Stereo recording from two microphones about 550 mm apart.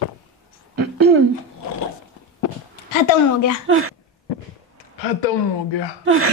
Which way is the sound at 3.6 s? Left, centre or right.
Right.